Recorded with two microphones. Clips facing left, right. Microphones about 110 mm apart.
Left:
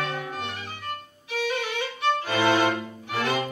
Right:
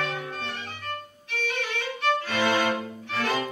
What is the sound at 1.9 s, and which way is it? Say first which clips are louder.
Violin: left 1 dB; 15° left (ahead or behind).